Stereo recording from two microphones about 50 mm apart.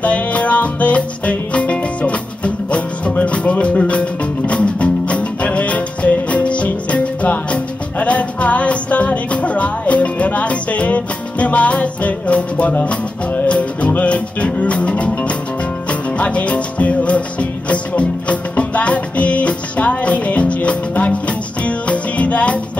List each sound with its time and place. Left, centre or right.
0.0 s music: left